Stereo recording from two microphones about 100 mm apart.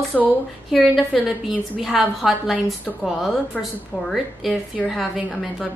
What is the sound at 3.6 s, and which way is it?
A woman's voice, centre (ahead or behind).